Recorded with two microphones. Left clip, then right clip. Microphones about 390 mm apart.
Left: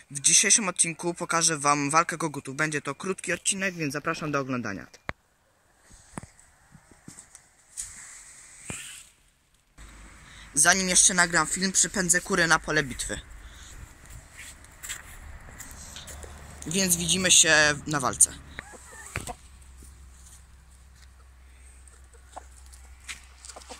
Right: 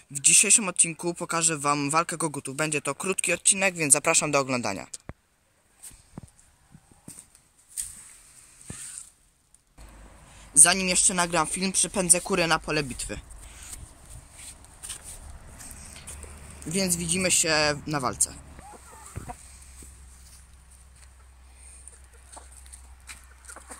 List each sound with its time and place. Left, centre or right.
0.1 s speech: centre
10.3 s speech: centre
15.8 s a sound: centre
16.5 s speech: centre